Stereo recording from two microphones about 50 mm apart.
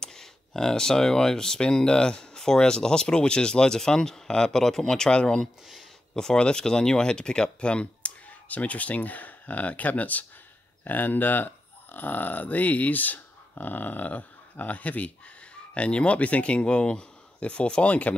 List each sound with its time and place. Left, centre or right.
0.0 s speech: centre; by 18.1 s left